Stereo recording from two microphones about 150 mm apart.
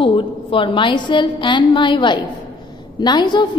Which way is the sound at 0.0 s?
35° left (ahead or behind).